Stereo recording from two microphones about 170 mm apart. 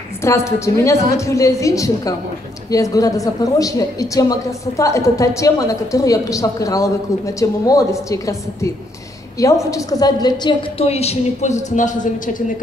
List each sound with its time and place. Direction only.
0.2 s a woman's voice: 15° left (ahead or behind); by 12.6 s 50° left (ahead or behind)